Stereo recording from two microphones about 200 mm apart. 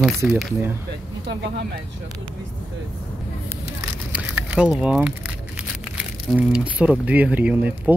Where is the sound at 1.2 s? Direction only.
55° right (ahead or behind).